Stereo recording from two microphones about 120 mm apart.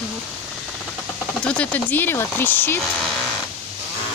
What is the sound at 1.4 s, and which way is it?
Speech, 10° left (ahead or behind).